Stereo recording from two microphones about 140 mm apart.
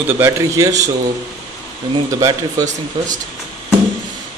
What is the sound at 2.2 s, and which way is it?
Speech, 25° right (ahead or behind).